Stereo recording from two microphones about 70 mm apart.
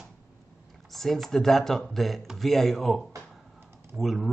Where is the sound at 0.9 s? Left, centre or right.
Centre.